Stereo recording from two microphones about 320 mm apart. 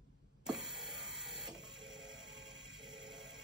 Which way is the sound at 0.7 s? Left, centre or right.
Centre.